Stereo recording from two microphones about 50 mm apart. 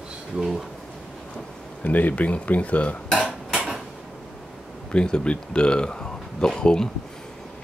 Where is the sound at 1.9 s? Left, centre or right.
Left.